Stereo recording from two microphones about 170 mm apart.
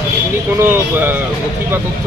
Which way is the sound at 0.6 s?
10° right (ahead or behind).